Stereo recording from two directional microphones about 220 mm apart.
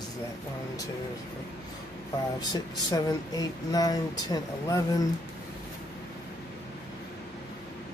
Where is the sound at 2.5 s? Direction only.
20° left (ahead or behind).